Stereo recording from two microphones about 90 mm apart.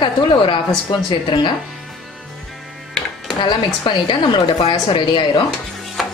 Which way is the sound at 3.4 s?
65° left (ahead or behind).